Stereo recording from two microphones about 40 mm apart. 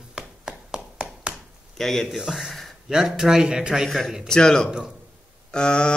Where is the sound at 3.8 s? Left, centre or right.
Centre.